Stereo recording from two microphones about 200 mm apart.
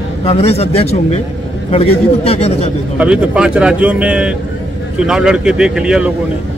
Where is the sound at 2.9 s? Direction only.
5° right (ahead or behind).